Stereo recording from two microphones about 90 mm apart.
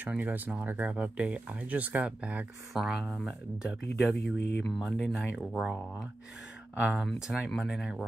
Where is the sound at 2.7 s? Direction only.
Centre (ahead or behind).